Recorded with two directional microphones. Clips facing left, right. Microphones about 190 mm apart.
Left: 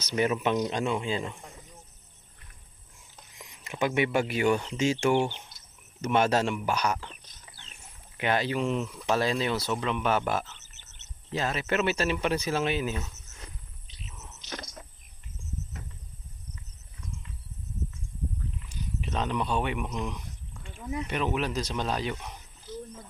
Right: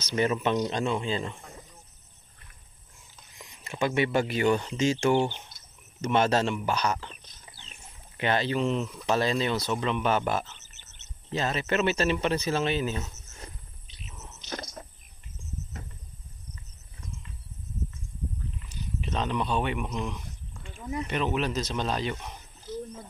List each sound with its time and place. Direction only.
0.0 s speech: 10° left (ahead or behind)
3.8 s speech: 15° left (ahead or behind)
8.2 s speech: 10° left (ahead or behind)
14.5 s cricket: 45° right (ahead or behind)
18.7 s speech: 5° left (ahead or behind)